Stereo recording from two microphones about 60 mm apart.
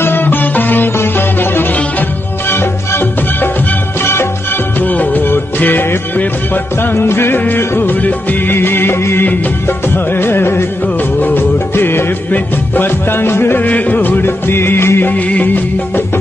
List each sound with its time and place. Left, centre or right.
0.0 s music: left
4.7 s music: left
9.2 s music: left
11.1 s music of bollywood: left
11.7 s music: left
13.6 s music: left